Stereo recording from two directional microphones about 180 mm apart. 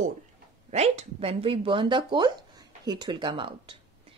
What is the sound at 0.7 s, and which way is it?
Speech, 35° right (ahead or behind).